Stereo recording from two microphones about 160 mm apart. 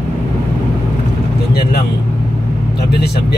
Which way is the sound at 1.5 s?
75° left (ahead or behind).